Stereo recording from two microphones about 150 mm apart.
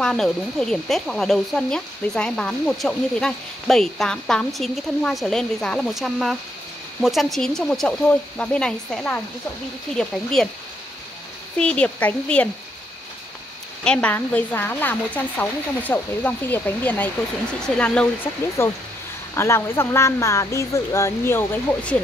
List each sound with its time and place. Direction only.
0.0 s speech: 5° left (ahead or behind)
11.5 s speech: 5° left (ahead or behind)
13.8 s speech: 10° left (ahead or behind)